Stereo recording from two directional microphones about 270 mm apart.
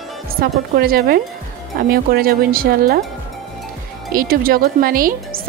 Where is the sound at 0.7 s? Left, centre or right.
Right.